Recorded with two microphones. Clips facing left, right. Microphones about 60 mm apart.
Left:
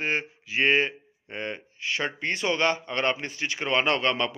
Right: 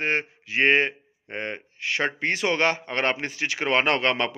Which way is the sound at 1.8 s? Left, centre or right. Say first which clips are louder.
Right 4 dB; right.